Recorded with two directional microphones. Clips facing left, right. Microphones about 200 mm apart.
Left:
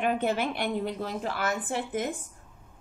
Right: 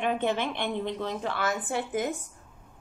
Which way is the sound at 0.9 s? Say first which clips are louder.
Right 1 dB; 35° left (ahead or behind).